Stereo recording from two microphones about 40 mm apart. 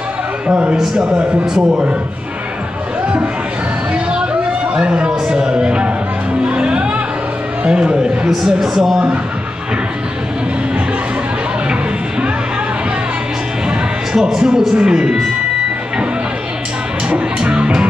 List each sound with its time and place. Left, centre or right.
0.5 s a man's voice: right
0.7 s a man's voice: centre
3.9 s a sound: right
6.4 s music: right
7.6 s a man's voice: right
8.5 s speech: centre
13.7 s a sound: centre
14.8 s speech: centre
17.1 s music: right